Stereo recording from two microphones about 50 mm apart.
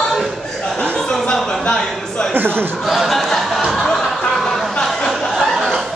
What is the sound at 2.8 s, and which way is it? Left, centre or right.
Chuckle, centre.